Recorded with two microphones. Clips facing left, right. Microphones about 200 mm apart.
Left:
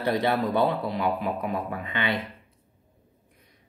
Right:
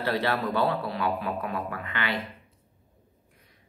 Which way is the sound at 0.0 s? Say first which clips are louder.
Left 3 dB; 15° left (ahead or behind).